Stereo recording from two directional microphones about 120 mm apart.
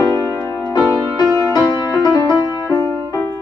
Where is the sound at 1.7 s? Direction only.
30° left (ahead or behind).